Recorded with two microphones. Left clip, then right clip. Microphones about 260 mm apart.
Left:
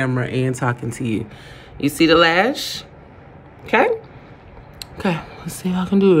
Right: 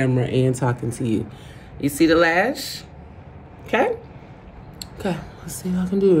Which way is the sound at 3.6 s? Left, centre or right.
Centre.